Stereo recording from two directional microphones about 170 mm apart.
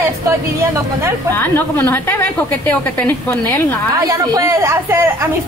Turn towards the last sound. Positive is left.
turn(degrees=-15)  # may be behind; listen again after turning